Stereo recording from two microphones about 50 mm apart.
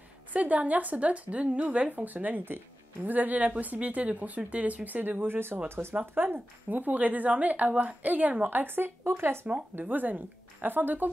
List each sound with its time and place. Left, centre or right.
0.3 s speech: right
9.8 s speech: right